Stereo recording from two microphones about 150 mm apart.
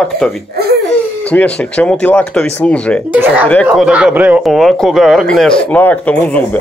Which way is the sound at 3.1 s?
10° right (ahead or behind).